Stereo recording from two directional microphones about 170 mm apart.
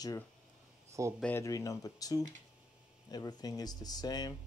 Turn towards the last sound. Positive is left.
turn(degrees=25)  # may be behind; listen again after turning